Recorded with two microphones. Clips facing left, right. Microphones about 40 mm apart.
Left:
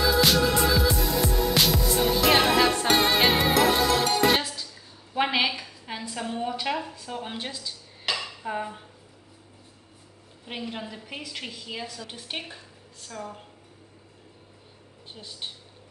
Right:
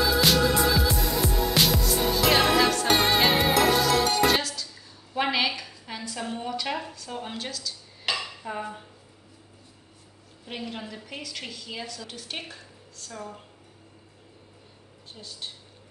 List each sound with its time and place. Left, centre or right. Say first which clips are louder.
0.0 s music: even; centre
2.9 s music: even; centre
4.1 s music: even; centre
5.1 s a woman's voice: left 1 dB; centre
7.3 s a woman's voice: even; left
8.0 s dishes: even; centre
10.4 s a woman's voice: left 1 dB; centre
15.1 s a woman's voice: left 1 dB; left